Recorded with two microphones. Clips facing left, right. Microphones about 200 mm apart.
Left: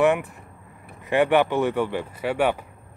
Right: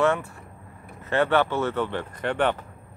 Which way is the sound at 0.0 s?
15° left (ahead or behind).